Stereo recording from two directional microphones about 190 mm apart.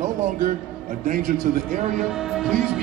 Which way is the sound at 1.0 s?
45° right (ahead or behind).